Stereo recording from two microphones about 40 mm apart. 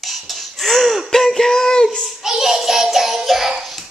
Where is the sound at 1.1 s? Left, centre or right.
Centre.